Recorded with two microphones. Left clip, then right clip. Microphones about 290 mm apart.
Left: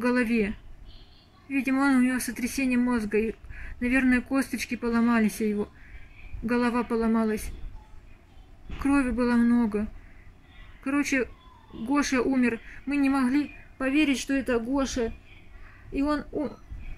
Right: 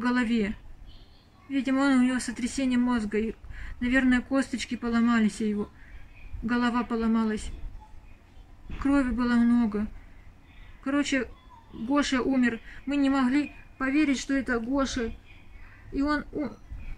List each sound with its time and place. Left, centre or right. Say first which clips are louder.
0.0 s speech: left 2 dB; centre
1.5 s speech: left 1 dB; centre
6.4 s speech: left 1 dB; centre
8.7 s speech: left 1 dB; centre
11.9 s speech: left 1 dB; centre